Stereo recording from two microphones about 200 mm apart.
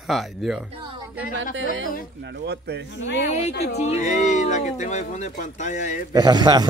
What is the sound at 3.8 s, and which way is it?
Speech, 35° left (ahead or behind).